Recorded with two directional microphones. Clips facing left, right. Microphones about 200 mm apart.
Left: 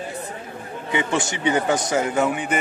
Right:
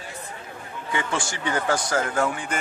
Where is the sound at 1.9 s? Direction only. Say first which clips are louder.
Left 3 dB; 10° left (ahead or behind).